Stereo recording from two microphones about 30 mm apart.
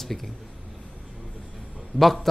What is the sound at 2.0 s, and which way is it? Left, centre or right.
Speech, centre.